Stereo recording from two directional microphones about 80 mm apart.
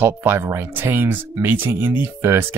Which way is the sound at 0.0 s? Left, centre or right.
Right.